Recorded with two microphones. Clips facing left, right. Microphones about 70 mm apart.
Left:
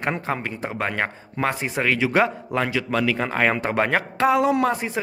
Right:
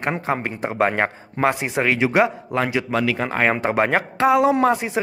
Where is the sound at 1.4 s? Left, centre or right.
Centre.